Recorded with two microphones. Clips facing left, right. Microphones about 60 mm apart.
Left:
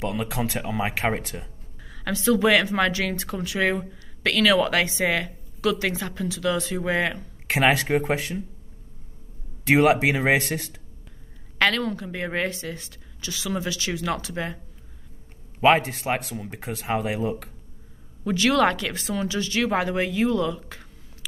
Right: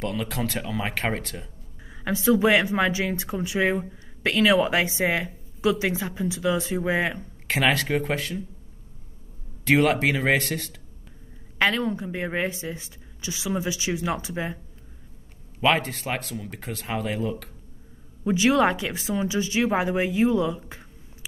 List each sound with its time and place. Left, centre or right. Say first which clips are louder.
0.0 s speech: left 1 dB; centre
2.0 s a woman's voice: even; right
7.4 s speech: left 2 dB; centre
9.7 s speech: left 2 dB; centre
11.5 s speech: left 1 dB; centre
15.6 s speech: left 4 dB; centre
18.2 s a woman's voice: even; centre